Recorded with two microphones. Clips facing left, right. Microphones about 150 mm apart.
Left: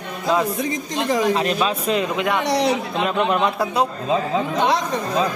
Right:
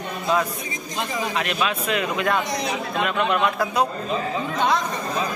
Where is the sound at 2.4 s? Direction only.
75° left (ahead or behind).